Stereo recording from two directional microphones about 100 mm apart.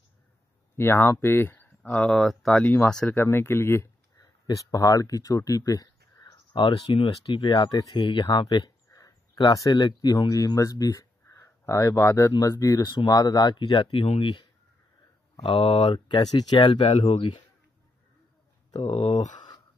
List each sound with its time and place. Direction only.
0.7 s speech: 25° left (ahead or behind); by 3.2 s 10° left (ahead or behind)
3.2 s speech: 25° left (ahead or behind)
4.2 s speech: 35° left (ahead or behind)
6.2 s speech: 55° left (ahead or behind)
8.5 s a sound: 45° left (ahead or behind)
9.4 s speech: 40° left (ahead or behind)
10.3 s speech: 35° left (ahead or behind); by 14.0 s 50° left (ahead or behind)
14.0 s speech: 90° left
15.4 s speech: 60° left (ahead or behind)
16.2 s speech: 45° left (ahead or behind)
16.8 s speech: 80° left
18.9 s speech: 90° left